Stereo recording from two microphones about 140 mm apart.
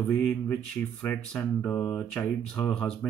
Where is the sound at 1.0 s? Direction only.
10° left (ahead or behind).